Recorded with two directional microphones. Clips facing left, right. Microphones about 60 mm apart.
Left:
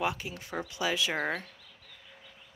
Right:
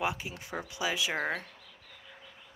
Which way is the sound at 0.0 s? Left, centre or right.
Centre.